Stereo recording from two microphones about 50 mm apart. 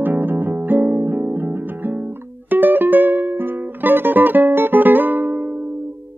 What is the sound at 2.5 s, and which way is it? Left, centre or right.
Music, right.